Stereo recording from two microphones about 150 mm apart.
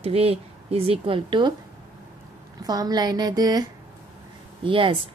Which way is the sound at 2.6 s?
25° right (ahead or behind).